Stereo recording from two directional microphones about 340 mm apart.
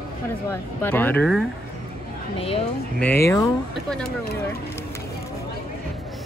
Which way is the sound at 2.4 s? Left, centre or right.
Centre.